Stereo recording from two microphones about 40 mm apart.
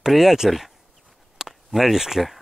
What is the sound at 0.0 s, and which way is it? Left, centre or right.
Speech, centre.